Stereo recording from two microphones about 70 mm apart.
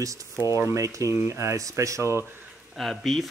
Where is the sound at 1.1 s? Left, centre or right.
Right.